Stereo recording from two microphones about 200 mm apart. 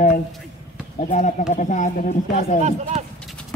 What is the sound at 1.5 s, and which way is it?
Speech, 40° left (ahead or behind).